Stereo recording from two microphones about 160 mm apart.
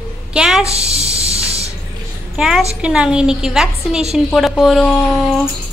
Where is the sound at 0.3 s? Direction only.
5° right (ahead or behind).